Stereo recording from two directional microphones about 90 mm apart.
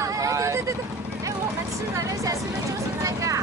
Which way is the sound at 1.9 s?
35° right (ahead or behind).